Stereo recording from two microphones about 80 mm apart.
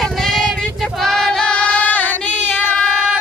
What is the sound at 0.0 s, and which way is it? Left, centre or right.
Female singing, centre.